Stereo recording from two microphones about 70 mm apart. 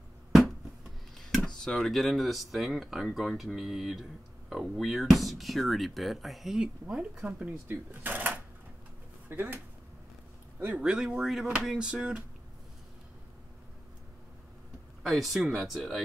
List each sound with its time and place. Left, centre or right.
1.1 s speech: centre
6.6 s speech: centre
7.4 s speech: right
10.8 s speech: centre
15.0 s speech: centre